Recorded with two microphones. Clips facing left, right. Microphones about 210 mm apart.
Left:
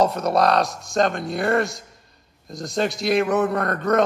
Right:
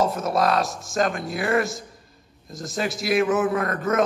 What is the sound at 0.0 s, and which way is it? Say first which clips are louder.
Speech: left 3 dB; centre (ahead or behind).